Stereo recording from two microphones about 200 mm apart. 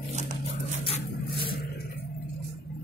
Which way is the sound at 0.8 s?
25° left (ahead or behind).